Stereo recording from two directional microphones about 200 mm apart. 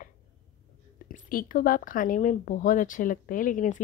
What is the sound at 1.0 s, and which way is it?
A woman's voice, 45° left (ahead or behind).